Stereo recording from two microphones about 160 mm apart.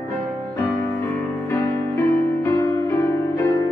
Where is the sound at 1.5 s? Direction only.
15° left (ahead or behind).